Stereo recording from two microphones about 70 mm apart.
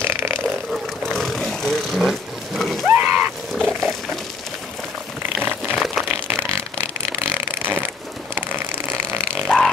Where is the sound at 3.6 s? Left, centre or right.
Centre.